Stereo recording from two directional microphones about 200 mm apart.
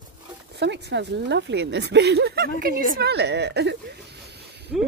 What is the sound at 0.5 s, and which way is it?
A woman's voice, 60° right (ahead or behind).